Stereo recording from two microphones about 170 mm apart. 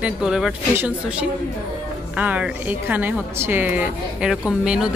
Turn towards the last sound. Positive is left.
turn(degrees=-5)  # may be behind; listen again after turning